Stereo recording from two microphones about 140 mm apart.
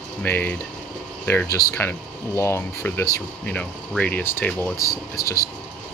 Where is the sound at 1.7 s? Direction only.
15° left (ahead or behind).